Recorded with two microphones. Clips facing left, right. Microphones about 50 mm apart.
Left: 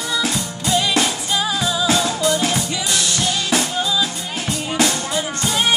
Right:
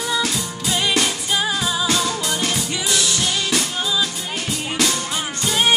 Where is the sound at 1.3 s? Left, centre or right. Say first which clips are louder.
Even; right.